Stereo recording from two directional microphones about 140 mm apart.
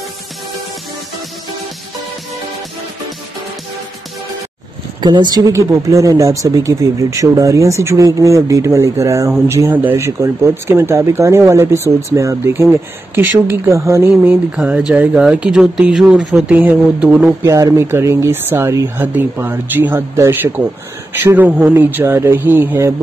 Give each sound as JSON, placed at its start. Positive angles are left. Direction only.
{"t": 5.0, "sound": "speech", "side_deg": -30}
{"t": 14.1, "sound": "speech", "side_deg": -10}
{"t": 17.4, "sound": "speech", "side_deg": -25}
{"t": 21.5, "sound": "speech", "side_deg": -5}
{"t": 21.7, "sound": "speech", "side_deg": -20}